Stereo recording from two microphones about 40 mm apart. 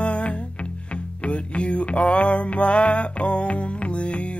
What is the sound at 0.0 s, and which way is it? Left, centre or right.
Music, left.